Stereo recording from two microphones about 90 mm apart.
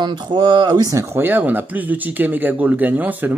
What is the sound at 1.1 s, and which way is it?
Speech, 20° right (ahead or behind).